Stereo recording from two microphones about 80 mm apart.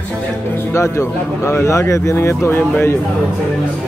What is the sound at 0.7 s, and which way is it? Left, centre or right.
Speech, left.